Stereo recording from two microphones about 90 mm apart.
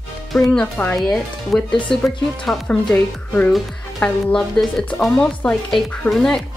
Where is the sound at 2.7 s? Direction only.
15° left (ahead or behind).